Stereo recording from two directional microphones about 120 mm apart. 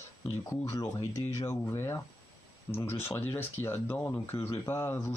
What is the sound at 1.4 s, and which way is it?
Speech, 20° left (ahead or behind).